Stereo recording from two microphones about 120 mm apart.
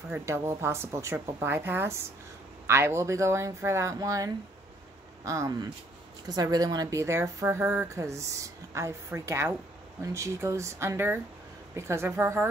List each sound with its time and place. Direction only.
0.1 s a woman's voice: 25° right (ahead or behind)